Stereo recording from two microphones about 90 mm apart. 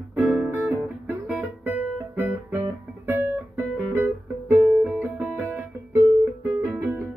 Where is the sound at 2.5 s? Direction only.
20° right (ahead or behind).